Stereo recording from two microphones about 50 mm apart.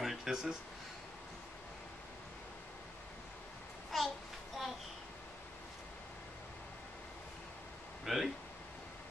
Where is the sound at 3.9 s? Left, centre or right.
Centre.